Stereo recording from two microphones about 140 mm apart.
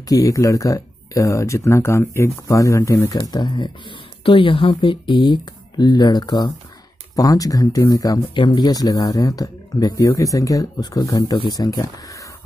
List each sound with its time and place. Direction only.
0.1 s speech: 25° left (ahead or behind)